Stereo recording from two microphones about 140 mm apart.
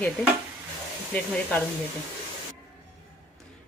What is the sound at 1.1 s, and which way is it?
Speech, 10° left (ahead or behind).